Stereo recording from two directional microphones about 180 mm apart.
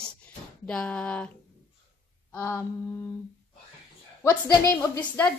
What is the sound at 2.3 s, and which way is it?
Speech, 15° left (ahead or behind).